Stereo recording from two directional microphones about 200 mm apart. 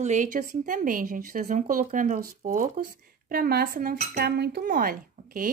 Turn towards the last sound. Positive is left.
turn(degrees=-45)  # may be behind; listen again after turning